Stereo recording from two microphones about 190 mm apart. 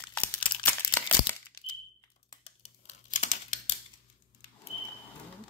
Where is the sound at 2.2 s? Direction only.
30° left (ahead or behind).